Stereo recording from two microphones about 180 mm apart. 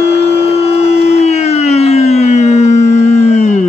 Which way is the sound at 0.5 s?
35° left (ahead or behind).